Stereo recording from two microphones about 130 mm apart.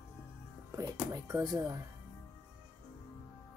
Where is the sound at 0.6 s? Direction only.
25° right (ahead or behind).